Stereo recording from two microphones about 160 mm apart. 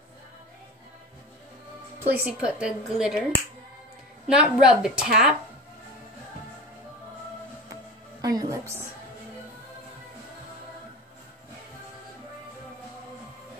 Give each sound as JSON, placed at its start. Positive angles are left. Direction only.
{"t": 2.0, "sound": "a woman's voice", "side_deg": -10}
{"t": 4.3, "sound": "a woman's voice", "side_deg": -5}
{"t": 8.2, "sound": "a woman's voice", "side_deg": -25}